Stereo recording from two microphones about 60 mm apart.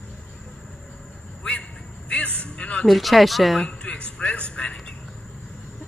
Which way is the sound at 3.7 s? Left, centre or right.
Centre.